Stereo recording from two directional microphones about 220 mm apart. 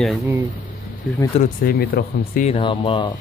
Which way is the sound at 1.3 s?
40° left (ahead or behind).